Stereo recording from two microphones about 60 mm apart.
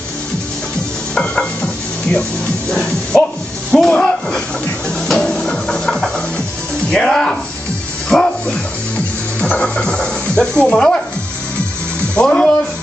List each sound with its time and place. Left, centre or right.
1.1 s stir: centre
2.7 s speech: centre
5.0 s music: centre
6.9 s speech: centre
8.1 s dog: centre
9.4 s speech: centre
12.2 s speech: centre